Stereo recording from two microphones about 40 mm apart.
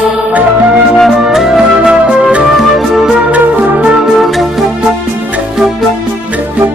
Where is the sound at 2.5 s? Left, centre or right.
Centre.